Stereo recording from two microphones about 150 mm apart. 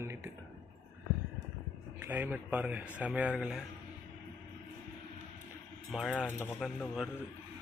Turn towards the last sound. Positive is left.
turn(degrees=0)  # may be behind; listen again after turning